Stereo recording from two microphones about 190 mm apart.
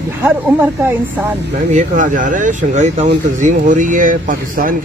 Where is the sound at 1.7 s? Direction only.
40° right (ahead or behind).